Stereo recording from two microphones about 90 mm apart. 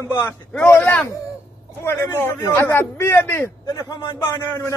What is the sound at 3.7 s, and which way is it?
Speech, 50° left (ahead or behind).